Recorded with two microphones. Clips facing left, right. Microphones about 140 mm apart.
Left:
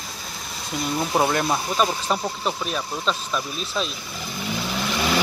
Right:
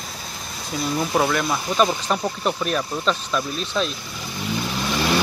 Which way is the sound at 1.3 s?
35° left (ahead or behind).